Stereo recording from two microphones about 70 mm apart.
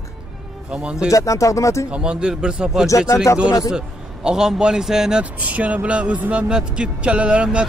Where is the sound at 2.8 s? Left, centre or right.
Left.